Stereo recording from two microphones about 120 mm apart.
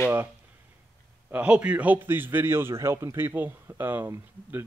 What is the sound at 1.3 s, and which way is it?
A man's voice, 10° right (ahead or behind).